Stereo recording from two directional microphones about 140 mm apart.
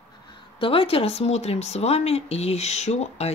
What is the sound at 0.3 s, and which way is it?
Speech, 40° left (ahead or behind).